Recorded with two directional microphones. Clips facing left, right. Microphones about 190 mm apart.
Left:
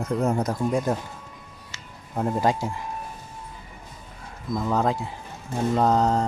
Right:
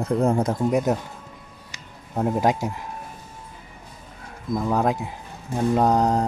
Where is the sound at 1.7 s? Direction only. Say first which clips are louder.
Right 2 dB; 10° right (ahead or behind).